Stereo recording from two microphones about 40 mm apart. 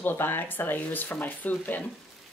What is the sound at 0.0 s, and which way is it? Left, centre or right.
Speech, left.